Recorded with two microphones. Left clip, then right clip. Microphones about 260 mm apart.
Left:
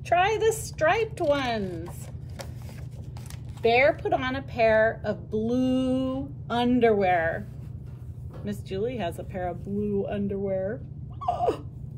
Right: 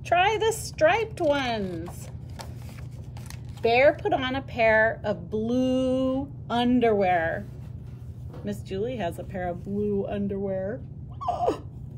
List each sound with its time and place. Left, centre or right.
0.1 s speech: centre
3.6 s speech: centre
8.5 s speech: centre